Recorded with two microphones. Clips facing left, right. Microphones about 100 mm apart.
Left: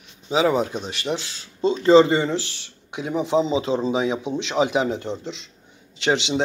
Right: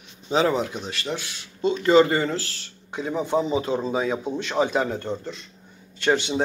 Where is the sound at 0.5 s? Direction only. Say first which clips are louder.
Left 3 dB; 20° left (ahead or behind).